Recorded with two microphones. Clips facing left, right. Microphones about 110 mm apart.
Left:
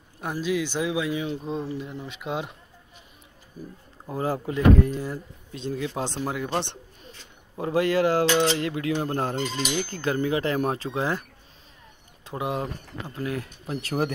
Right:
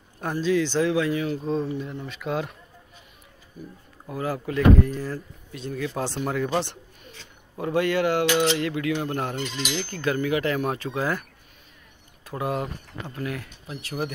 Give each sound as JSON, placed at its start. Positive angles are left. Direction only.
{"t": 0.2, "sound": "speech", "side_deg": 10}
{"t": 1.8, "sound": "speech", "side_deg": 5}
{"t": 2.0, "sound": "speech", "side_deg": 20}
{"t": 4.0, "sound": "speech", "side_deg": 30}
{"t": 7.5, "sound": "speech", "side_deg": 30}
{"t": 9.8, "sound": "speech", "side_deg": 30}
{"t": 12.3, "sound": "speech", "side_deg": 20}
{"t": 13.7, "sound": "speech", "side_deg": 45}